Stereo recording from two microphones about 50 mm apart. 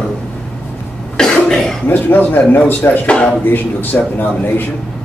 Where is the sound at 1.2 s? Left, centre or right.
Centre.